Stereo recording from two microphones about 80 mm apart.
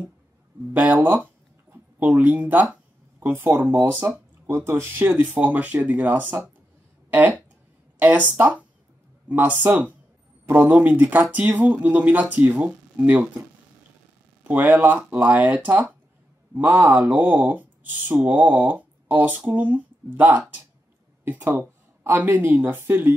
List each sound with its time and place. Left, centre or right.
0.7 s speech: right
3.2 s speech: right
4.5 s speech: right; by 13.4 s centre
14.4 s speech: right